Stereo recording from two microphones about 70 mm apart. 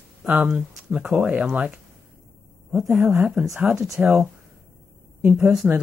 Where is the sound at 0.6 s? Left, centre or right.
Centre.